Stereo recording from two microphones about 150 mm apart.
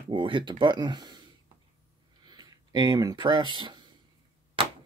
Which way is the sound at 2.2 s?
25° right (ahead or behind).